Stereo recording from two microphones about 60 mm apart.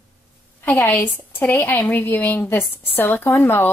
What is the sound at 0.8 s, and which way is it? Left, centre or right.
A woman's voice, left.